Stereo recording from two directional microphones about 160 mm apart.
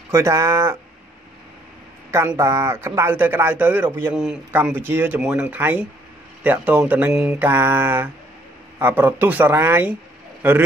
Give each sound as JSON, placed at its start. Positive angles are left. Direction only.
{"t": 0.1, "sound": "speech", "side_deg": -20}
{"t": 2.0, "sound": "a man's voice", "side_deg": -15}